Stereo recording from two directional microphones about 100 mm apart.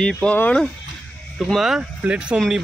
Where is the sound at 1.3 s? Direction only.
Centre (ahead or behind).